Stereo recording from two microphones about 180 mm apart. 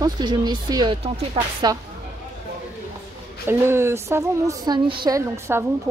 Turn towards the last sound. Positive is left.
turn(degrees=-10)  # may be behind; listen again after turning